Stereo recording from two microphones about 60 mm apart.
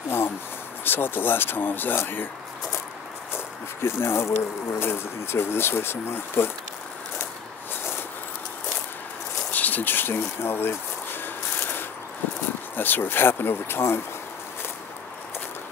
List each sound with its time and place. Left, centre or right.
0.8 s speech: left
3.3 s speech: left
9.5 s a sound: left
12.7 s speech: left